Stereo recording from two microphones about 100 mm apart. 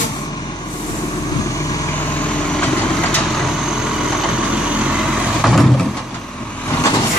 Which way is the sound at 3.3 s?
5° right (ahead or behind).